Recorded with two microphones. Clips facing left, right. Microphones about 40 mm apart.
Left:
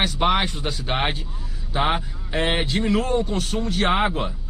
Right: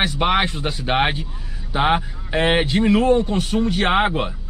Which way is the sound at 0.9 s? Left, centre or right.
Centre.